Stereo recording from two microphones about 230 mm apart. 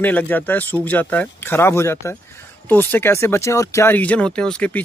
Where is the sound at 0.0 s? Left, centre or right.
Centre.